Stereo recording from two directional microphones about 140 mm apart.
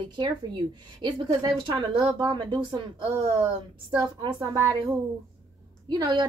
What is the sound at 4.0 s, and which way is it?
Speech, 35° right (ahead or behind).